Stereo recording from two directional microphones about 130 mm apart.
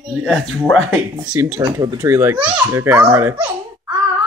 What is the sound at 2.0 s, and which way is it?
Speech, 20° right (ahead or behind).